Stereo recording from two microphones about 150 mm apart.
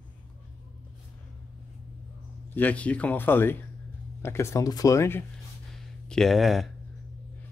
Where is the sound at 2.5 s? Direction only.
10° left (ahead or behind).